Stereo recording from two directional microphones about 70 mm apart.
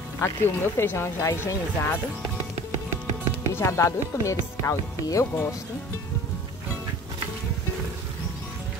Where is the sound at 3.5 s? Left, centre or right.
Left.